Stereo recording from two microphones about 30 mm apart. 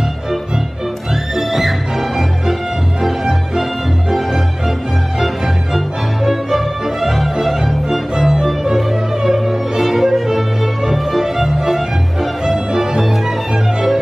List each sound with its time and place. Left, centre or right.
1.3 s music: centre
3.0 s music: centre
6.2 s music: centre